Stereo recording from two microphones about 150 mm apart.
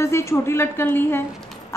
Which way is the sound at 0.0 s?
20° left (ahead or behind).